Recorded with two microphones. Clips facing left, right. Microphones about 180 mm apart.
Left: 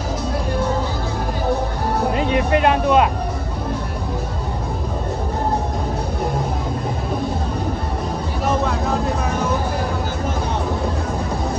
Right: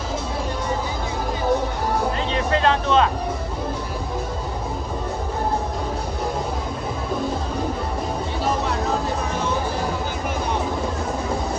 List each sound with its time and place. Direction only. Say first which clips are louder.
2.1 s vehicle: left 4 dB; 15° left (ahead or behind)